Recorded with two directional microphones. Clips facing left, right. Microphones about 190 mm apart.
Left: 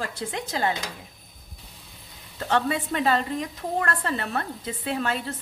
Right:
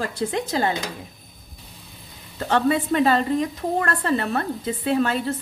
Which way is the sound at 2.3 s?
40° right (ahead or behind).